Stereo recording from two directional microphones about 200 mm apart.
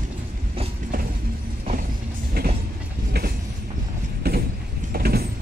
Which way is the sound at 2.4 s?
50° right (ahead or behind).